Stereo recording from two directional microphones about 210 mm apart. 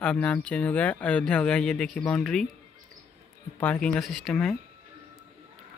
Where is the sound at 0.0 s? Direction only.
5° left (ahead or behind).